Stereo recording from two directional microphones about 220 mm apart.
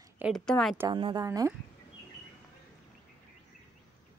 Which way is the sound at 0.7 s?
20° right (ahead or behind).